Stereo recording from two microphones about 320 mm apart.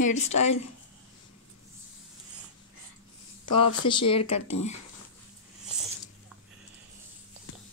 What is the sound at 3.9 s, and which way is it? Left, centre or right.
Speech, centre.